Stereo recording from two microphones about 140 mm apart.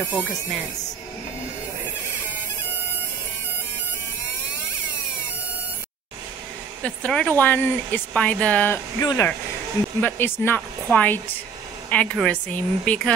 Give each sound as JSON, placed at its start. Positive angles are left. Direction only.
{"t": 6.8, "sound": "speech", "side_deg": 5}
{"t": 9.0, "sound": "speech", "side_deg": 25}
{"t": 9.9, "sound": "speech", "side_deg": 15}